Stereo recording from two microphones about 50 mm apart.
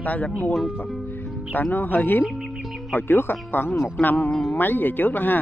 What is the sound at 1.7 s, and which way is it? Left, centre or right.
Music, left.